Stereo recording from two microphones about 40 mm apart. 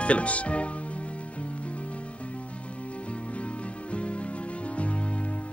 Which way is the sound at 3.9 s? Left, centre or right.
Left.